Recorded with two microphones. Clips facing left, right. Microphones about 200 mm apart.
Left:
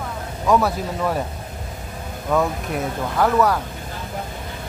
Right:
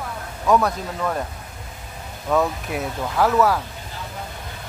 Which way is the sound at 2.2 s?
Centre (ahead or behind).